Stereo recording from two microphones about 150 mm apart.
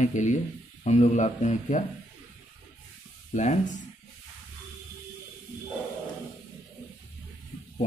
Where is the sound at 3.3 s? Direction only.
55° left (ahead or behind).